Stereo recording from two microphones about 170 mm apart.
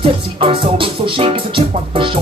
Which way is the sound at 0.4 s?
30° right (ahead or behind).